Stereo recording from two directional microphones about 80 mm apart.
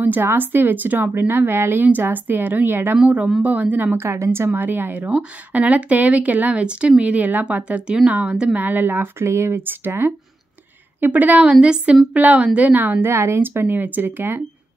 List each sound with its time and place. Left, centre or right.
0.0 s a woman's voice: right